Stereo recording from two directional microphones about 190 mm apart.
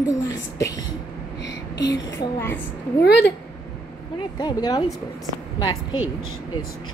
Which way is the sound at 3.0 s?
60° left (ahead or behind).